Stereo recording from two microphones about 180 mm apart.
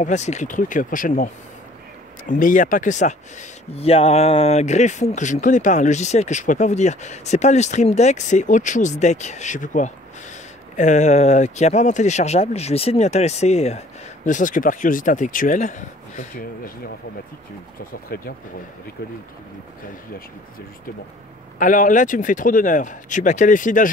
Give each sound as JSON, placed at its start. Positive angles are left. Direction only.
{"t": 0.0, "sound": "speech", "side_deg": 40}
{"t": 18.1, "sound": "speech", "side_deg": 60}
{"t": 21.5, "sound": "speech", "side_deg": 45}